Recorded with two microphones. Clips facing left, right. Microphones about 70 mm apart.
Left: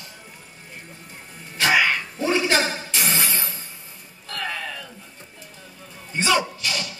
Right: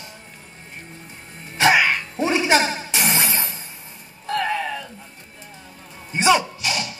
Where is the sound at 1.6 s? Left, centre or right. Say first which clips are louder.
Right 3 dB; right.